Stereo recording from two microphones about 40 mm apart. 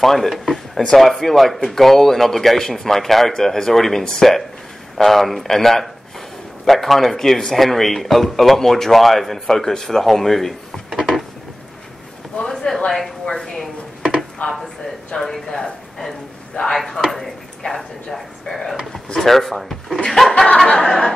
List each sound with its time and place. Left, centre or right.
0.0 s speech: centre
12.4 s a sound: centre
14.4 s speech: left
15.1 s speech: centre
16.7 s speech: centre
17.1 s a sound: centre
19.1 s speech: centre